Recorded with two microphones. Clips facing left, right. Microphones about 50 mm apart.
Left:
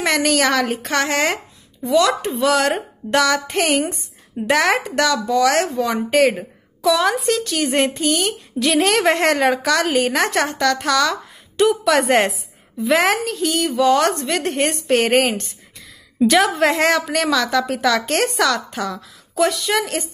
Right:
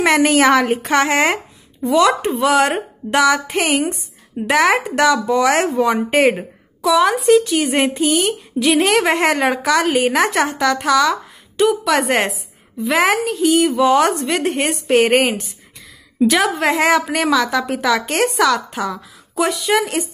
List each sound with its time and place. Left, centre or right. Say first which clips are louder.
0.0 s speech: right 5 dB; right
6.8 s speech: right 3 dB; centre